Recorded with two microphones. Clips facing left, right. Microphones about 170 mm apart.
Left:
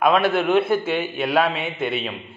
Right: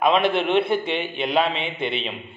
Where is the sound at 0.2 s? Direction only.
5° left (ahead or behind).